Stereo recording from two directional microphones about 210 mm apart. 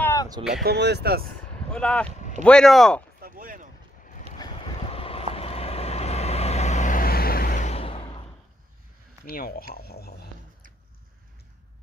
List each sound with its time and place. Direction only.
0.0 s a sound: 15° left (ahead or behind)
0.4 s speech: 5° right (ahead or behind)
0.7 s speech: 55° right (ahead or behind)
1.7 s speech: 5° left (ahead or behind)
3.2 s a sound: 40° right (ahead or behind)
4.4 s vehicle: 25° left (ahead or behind)
9.2 s speech: 45° left (ahead or behind)